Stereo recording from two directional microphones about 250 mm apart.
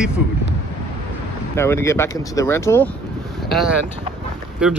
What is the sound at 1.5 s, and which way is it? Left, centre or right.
Speech, centre.